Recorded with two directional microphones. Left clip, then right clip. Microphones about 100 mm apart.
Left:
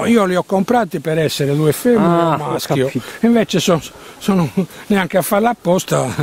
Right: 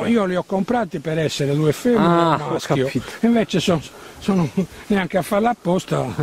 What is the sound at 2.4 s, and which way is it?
Speech, 35° left (ahead or behind).